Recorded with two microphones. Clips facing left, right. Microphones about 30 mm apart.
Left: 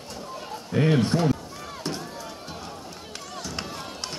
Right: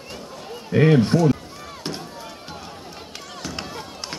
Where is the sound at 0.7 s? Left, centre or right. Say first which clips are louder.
Right 6 dB; right.